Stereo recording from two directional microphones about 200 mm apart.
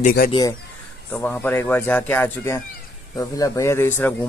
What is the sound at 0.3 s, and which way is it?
Speech, 20° left (ahead or behind).